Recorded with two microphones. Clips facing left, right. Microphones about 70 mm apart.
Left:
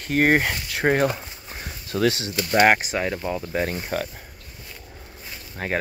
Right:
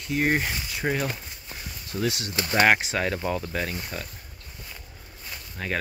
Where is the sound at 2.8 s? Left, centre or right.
Centre.